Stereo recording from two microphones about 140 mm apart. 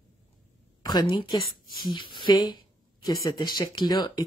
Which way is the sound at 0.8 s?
30° left (ahead or behind).